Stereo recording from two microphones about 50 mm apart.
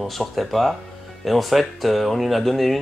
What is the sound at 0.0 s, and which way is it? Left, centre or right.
Speech, centre.